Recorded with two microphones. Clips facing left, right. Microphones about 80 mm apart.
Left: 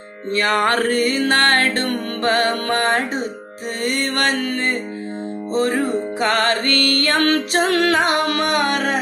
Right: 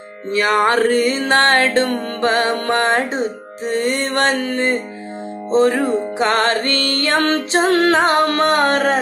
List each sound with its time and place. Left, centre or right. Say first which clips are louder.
0.3 s music: right 2 dB; centre
1.0 s music: right 2 dB; right